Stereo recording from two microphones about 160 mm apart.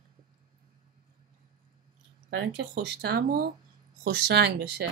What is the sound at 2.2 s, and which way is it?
Speech, 90° right.